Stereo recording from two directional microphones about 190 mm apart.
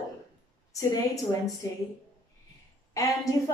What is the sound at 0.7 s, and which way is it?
Speech, 15° left (ahead or behind).